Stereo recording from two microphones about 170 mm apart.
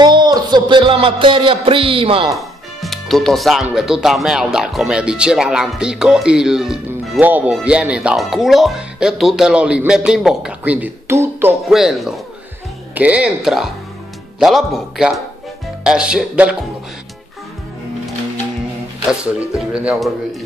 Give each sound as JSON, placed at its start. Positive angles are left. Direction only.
{"t": 0.0, "sound": "speech", "side_deg": -25}
{"t": 2.2, "sound": "speech", "side_deg": 0}
{"t": 11.7, "sound": "speech", "side_deg": 0}
{"t": 19.5, "sound": "speech", "side_deg": -5}